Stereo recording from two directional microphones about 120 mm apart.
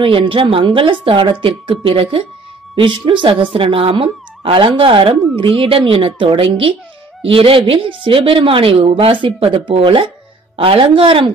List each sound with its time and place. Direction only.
0.0 s a woman's voice: 45° right (ahead or behind)